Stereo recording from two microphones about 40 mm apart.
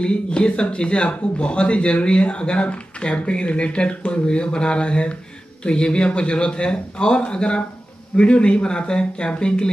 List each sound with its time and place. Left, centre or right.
0.0 s speech: left